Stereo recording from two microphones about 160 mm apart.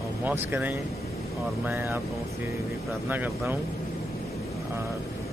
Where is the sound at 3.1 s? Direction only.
10° right (ahead or behind).